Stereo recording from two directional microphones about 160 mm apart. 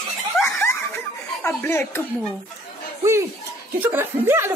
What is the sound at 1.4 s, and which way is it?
Speech, 10° left (ahead or behind).